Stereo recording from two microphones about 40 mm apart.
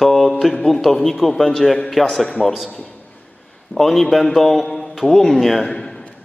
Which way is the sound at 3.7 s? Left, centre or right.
Centre.